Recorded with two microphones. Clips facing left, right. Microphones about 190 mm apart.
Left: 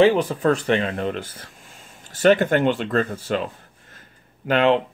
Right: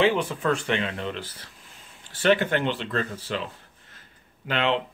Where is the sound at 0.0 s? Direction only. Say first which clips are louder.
Left 6 dB; 40° left (ahead or behind).